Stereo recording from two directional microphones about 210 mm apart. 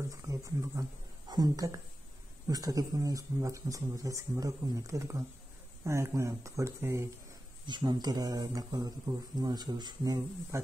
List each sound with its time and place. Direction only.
0.1 s speech: 15° right (ahead or behind)